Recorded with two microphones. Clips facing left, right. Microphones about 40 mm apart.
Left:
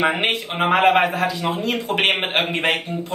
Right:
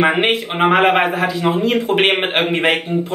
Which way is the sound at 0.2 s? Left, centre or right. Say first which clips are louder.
Right 5 dB; right.